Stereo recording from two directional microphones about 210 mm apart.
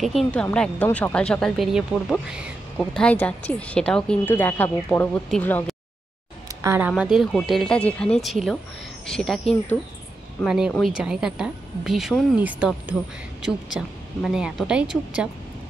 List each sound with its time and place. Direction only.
0.0 s a woman's voice: centre (ahead or behind)
6.6 s speech: 10° right (ahead or behind)
6.9 s a woman's voice: centre (ahead or behind)